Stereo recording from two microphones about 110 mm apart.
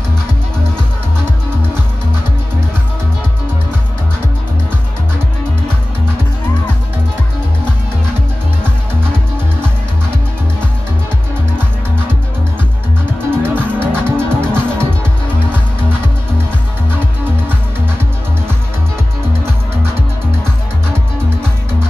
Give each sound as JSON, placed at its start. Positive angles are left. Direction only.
{"t": 13.4, "sound": "music", "side_deg": -20}